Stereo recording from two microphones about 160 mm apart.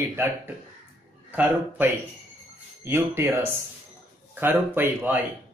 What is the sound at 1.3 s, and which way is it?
Speech, 10° right (ahead or behind).